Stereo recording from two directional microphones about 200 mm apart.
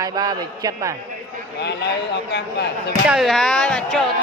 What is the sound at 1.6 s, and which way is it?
Speech, 60° left (ahead or behind).